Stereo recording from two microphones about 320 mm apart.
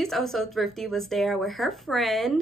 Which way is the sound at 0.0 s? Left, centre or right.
Centre.